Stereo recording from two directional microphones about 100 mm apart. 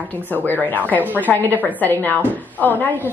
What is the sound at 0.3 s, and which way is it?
A woman's voice, 20° left (ahead or behind).